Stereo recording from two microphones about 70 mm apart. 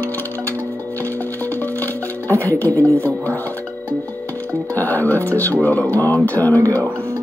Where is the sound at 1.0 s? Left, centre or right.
Left.